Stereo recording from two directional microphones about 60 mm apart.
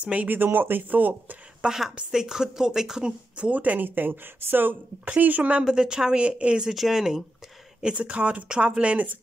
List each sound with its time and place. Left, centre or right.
0.0 s speech: right
1.6 s speech: centre
5.6 s speech: centre
6.7 s speech: centre
7.8 s speech: right